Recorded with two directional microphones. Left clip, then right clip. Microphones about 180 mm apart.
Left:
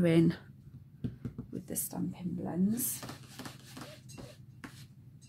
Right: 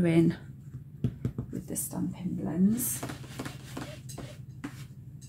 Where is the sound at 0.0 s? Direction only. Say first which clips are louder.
Right 2 dB; 45° left (ahead or behind).